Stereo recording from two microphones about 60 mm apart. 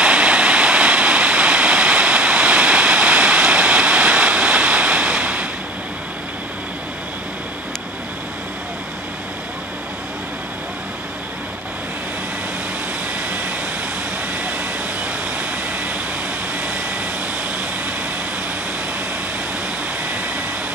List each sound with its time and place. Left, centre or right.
0.0 s waterfall: centre
15.3 s vehicle: right